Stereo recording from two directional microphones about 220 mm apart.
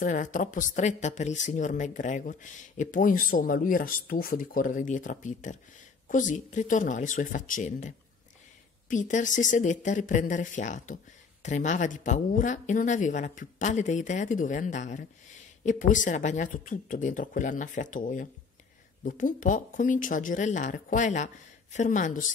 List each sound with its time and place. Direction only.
0.0 s speech: 35° left (ahead or behind)